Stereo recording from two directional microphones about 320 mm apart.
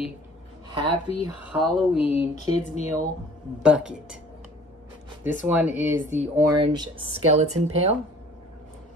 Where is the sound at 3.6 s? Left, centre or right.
Centre.